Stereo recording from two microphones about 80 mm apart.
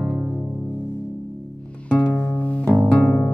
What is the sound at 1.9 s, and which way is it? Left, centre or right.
Music, centre.